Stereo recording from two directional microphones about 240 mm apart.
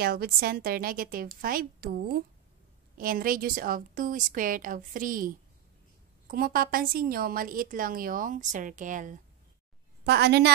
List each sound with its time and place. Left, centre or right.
0.0 s a woman's voice: right
10.0 s a woman's voice: right